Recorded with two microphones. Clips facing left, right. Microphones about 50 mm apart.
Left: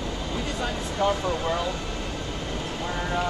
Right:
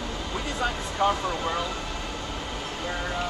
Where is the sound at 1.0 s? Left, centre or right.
Centre.